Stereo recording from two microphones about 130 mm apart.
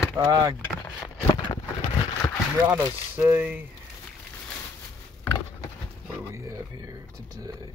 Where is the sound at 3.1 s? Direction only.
15° right (ahead or behind).